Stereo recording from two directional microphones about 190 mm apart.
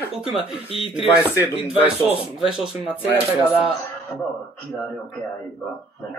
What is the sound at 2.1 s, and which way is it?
Speech, 5° right (ahead or behind).